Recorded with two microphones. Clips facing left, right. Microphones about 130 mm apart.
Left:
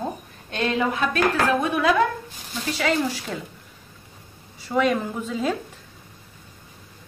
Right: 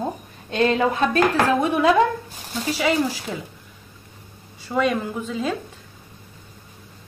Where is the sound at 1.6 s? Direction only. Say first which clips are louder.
Right 3 dB; 25° right (ahead or behind).